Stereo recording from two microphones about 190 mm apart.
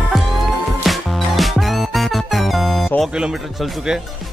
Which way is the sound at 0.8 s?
Centre (ahead or behind).